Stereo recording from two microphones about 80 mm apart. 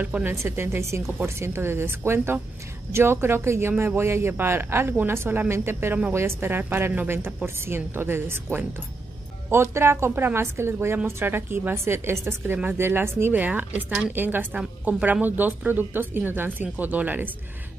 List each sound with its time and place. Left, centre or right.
0.0 s speech: centre
0.3 s a man's voice: right